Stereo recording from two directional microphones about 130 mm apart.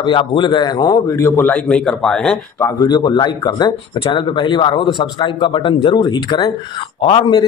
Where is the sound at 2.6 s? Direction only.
25° left (ahead or behind).